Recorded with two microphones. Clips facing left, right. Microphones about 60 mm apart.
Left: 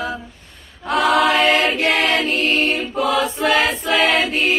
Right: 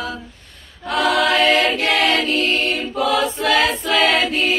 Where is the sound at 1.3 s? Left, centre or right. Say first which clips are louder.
Even; left.